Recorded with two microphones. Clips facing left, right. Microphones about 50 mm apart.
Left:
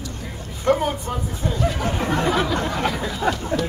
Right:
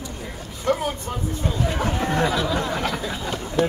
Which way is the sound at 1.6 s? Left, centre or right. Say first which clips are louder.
Left 1 dB; right.